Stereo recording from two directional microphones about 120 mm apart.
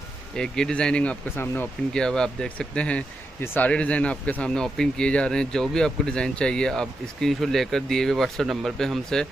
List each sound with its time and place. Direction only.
0.4 s speech: 5° left (ahead or behind)
2.0 s speech: 5° left (ahead or behind)